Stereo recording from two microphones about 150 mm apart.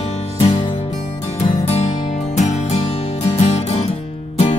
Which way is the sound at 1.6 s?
45° left (ahead or behind).